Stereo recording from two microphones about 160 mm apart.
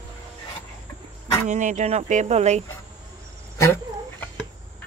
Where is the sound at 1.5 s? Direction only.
50° right (ahead or behind).